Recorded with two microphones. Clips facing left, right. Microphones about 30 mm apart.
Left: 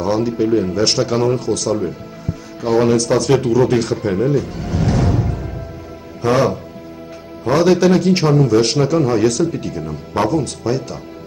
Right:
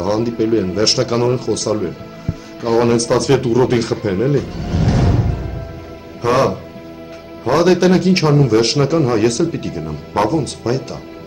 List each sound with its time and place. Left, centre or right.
0.0 s a man's voice: right